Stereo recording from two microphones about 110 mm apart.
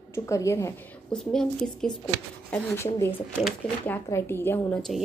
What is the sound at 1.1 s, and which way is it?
Speech, 5° left (ahead or behind).